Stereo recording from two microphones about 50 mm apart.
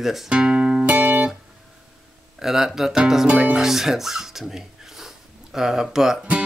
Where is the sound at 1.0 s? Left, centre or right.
Right.